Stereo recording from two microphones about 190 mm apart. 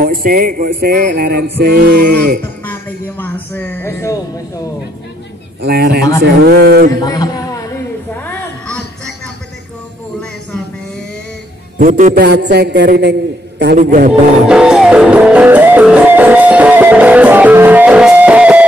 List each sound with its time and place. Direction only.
0.0 s speech: 50° right (ahead or behind)
2.4 s music: 10° left (ahead or behind)
3.2 s speech: 10° left (ahead or behind)
5.6 s a man's voice: 55° right (ahead or behind)
7.0 s a sound: 20° left (ahead or behind)
11.8 s speech: 45° right (ahead or behind)
12.2 s a man's voice: 60° right (ahead or behind)
13.7 s a man's voice: 40° right (ahead or behind)
14.5 s music: 5° right (ahead or behind)